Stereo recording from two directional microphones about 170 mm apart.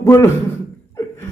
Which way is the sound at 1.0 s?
15° left (ahead or behind).